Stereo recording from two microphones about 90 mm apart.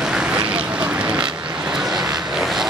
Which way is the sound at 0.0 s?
10° right (ahead or behind).